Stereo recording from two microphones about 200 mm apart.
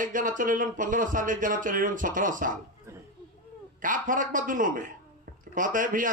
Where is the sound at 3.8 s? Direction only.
40° right (ahead or behind).